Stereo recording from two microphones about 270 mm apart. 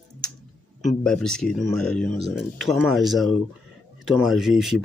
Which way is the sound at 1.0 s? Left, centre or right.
Centre.